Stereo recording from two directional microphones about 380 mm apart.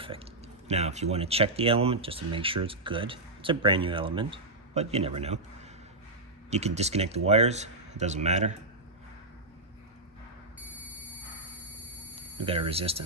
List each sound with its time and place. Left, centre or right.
0.7 s speech: centre
6.5 s speech: centre
12.2 s speech: centre